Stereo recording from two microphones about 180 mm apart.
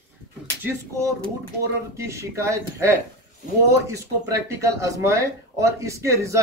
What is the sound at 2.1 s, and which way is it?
Speech, 15° right (ahead or behind).